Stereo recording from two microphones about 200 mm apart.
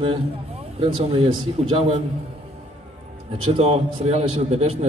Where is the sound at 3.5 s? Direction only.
30° right (ahead or behind).